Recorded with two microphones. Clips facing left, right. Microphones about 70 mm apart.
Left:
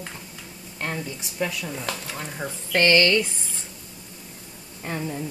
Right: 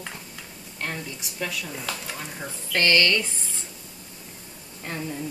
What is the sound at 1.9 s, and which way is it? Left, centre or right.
Speech, centre.